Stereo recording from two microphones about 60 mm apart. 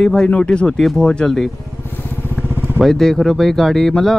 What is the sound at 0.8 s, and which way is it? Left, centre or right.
Speech, centre.